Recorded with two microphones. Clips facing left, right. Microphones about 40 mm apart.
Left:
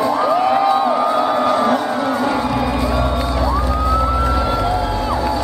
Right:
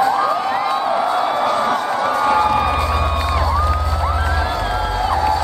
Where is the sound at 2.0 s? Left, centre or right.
Centre.